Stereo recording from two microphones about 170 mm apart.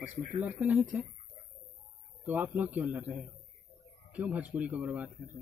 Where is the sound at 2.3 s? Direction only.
10° right (ahead or behind).